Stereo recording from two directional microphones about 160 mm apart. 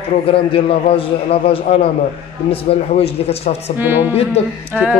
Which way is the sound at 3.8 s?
10° right (ahead or behind).